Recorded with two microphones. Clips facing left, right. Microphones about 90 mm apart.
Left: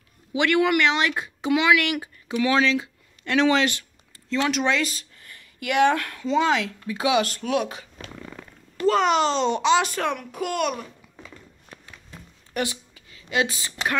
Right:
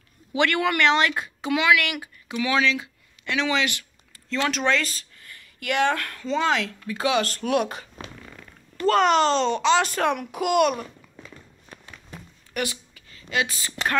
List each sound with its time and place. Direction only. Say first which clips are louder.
0.3 s speech: left 2 dB; 15° left (ahead or behind); by 2.9 s 30° left (ahead or behind)
3.3 s speech: left 4 dB; 40° left (ahead or behind)
4.3 s a sound: left 1 dB; 15° left (ahead or behind)
5.7 s speech: left 3 dB; 15° left (ahead or behind)
8.8 s a child's voice: right 1 dB; 5° left (ahead or behind)
9.9 s a child's voice: right 2 dB; 5° right (ahead or behind)
12.5 s a sound: left 1 dB; 25° left (ahead or behind)
13.3 s speech: left 2 dB; 20° left (ahead or behind)